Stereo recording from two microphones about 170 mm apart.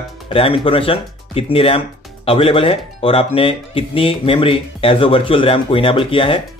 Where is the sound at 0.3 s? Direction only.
35° left (ahead or behind).